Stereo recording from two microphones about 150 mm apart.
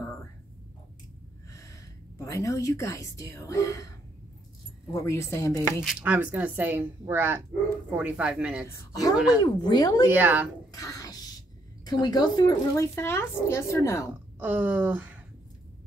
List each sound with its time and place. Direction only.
1.5 s a woman's voice: 20° left (ahead or behind)
4.9 s speech: 20° left (ahead or behind)
5.9 s speech: 10° right (ahead or behind)
8.6 s speech: 25° left (ahead or behind)
9.1 s speech: 10° right (ahead or behind)
9.4 s speech: 25° left (ahead or behind)
10.0 s speech: 15° right (ahead or behind)
10.8 s a sound: 25° left (ahead or behind)
11.8 s speech: 25° left (ahead or behind)
14.4 s speech: 10° right (ahead or behind)